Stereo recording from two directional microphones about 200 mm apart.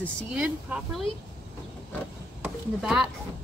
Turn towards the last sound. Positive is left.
turn(degrees=0)  # may be behind; listen again after turning